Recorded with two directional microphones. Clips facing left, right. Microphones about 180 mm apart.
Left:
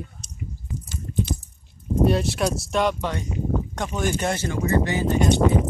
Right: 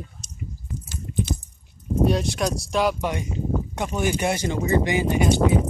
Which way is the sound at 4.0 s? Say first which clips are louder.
Right 1 dB; 10° right (ahead or behind).